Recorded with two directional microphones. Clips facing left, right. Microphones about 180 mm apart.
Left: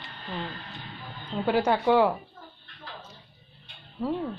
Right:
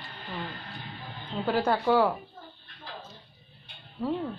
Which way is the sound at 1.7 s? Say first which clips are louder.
Left 1 dB; 15° left (ahead or behind).